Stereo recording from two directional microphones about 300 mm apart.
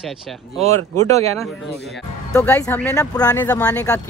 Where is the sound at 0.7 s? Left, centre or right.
Right.